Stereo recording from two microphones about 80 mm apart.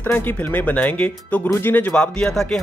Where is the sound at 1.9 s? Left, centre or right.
Centre.